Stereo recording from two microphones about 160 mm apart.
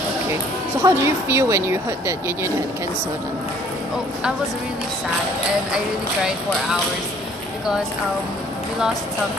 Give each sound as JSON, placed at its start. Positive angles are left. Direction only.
{"t": 0.8, "sound": "speech", "side_deg": -15}